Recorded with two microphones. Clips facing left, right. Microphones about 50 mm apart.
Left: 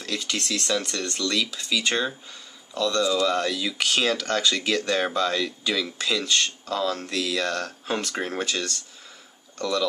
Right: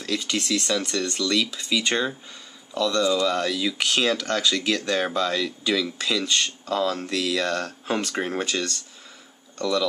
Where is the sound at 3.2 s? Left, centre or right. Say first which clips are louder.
Right 1 dB; centre.